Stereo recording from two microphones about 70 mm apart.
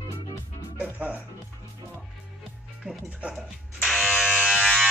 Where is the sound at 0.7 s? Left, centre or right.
Right.